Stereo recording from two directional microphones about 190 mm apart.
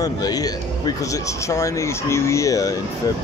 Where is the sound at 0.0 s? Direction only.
20° left (ahead or behind).